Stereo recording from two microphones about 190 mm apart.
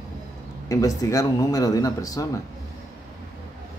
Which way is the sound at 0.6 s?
20° left (ahead or behind).